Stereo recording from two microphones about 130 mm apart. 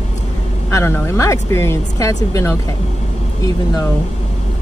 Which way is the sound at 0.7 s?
20° left (ahead or behind).